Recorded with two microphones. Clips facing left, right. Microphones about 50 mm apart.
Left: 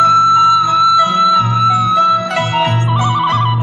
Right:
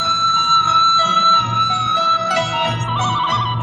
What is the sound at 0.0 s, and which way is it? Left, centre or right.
Music, left.